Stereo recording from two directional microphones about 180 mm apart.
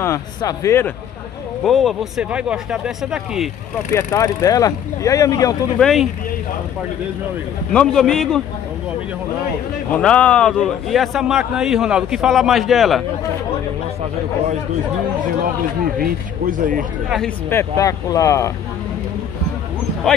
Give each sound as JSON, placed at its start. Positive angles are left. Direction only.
{"t": 0.0, "sound": "speech", "side_deg": 20}
{"t": 1.6, "sound": "a man's voice", "side_deg": 0}
{"t": 3.9, "sound": "speech", "side_deg": 20}
{"t": 5.8, "sound": "a man's voice", "side_deg": 0}
{"t": 7.7, "sound": "a man's voice", "side_deg": 5}
{"t": 9.9, "sound": "a man's voice", "side_deg": 5}
{"t": 16.0, "sound": "speech", "side_deg": -45}
{"t": 17.5, "sound": "speech", "side_deg": 15}